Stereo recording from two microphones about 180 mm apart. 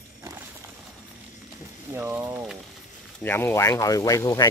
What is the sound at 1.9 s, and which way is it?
Speech, 10° right (ahead or behind).